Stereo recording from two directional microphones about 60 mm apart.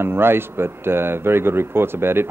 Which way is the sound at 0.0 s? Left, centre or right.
Right.